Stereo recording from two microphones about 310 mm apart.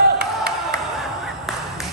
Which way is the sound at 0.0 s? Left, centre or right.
Right.